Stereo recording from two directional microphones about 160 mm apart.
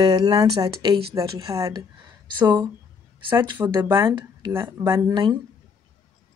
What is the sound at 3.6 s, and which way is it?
Speech, 15° right (ahead or behind).